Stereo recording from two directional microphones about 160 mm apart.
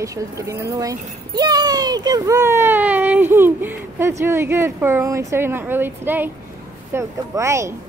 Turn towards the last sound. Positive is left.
turn(degrees=-20)  # may be behind; listen again after turning